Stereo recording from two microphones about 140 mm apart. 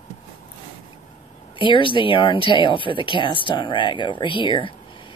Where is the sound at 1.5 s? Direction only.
35° left (ahead or behind).